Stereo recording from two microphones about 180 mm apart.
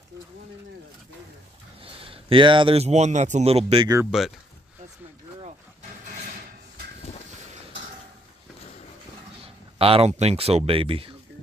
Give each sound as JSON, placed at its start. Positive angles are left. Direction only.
{"t": 1.8, "sound": "speech", "side_deg": -30}
{"t": 4.1, "sound": "speech", "side_deg": -5}
{"t": 9.8, "sound": "speech", "side_deg": -30}